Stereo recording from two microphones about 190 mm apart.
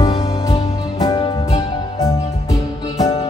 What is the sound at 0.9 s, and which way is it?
Music, 20° left (ahead or behind).